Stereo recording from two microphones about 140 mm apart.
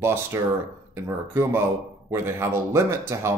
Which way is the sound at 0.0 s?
15° right (ahead or behind).